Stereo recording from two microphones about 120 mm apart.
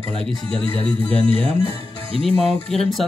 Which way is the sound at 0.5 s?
55° left (ahead or behind).